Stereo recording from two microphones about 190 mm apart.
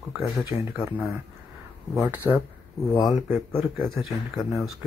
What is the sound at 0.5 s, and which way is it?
Speech, 15° right (ahead or behind).